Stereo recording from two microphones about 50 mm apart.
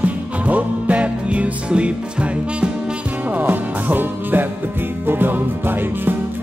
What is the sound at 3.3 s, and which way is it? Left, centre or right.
Music, right.